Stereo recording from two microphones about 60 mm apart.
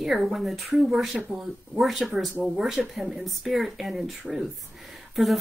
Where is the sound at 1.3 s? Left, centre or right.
Centre.